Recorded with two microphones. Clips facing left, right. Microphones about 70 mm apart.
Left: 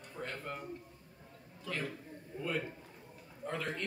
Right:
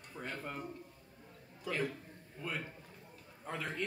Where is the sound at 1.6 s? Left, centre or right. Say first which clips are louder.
Right 3 dB; centre.